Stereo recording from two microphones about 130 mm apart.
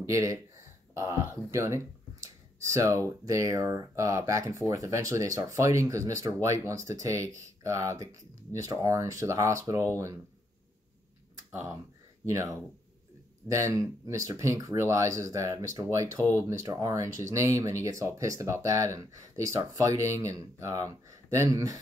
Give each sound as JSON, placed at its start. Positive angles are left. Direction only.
{"t": 0.0, "sound": "speech", "side_deg": -25}
{"t": 1.5, "sound": "a sound", "side_deg": -20}
{"t": 3.3, "sound": "speech", "side_deg": -25}
{"t": 13.5, "sound": "speech", "side_deg": -20}